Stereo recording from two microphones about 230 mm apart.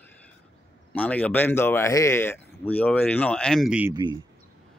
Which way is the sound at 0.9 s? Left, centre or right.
Centre.